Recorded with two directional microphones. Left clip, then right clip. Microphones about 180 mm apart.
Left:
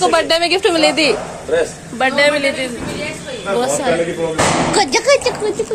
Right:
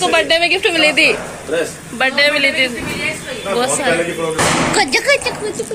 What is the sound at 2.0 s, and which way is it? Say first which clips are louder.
A woman's voice: even; 15° left (ahead or behind).